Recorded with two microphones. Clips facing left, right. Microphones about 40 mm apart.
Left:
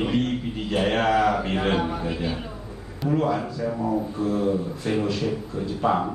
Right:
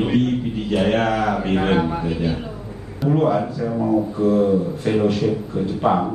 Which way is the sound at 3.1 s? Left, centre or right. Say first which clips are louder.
Right 5 dB; right.